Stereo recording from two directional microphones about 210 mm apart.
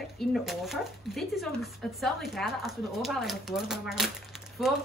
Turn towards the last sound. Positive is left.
turn(degrees=0)  # may be behind; listen again after turning